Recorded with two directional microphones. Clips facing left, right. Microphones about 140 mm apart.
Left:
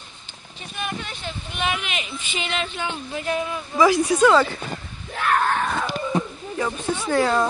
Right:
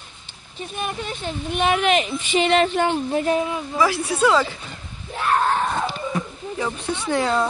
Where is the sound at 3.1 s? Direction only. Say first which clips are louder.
Right 6 dB; 40° right (ahead or behind).